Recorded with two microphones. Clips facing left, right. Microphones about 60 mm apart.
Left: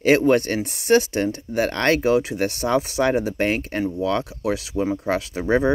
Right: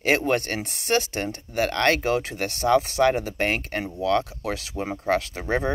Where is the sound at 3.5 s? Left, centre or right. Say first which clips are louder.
Left 3 dB; right.